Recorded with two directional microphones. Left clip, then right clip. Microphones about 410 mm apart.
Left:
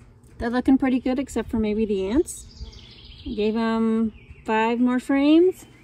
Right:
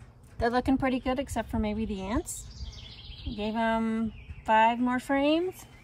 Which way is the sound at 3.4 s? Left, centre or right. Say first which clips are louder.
Left 5 dB; right.